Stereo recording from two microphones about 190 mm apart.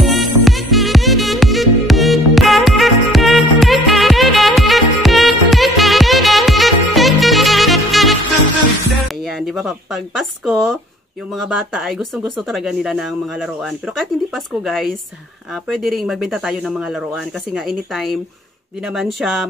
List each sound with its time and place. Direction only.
0.0 s music: centre (ahead or behind)
9.2 s speech: centre (ahead or behind)